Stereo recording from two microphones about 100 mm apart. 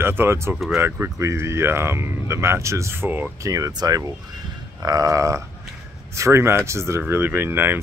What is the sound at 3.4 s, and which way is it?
Speech, 35° right (ahead or behind).